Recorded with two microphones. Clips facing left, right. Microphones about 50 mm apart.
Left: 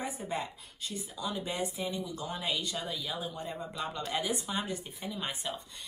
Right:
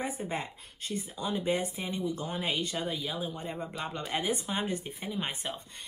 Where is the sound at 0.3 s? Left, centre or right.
Right.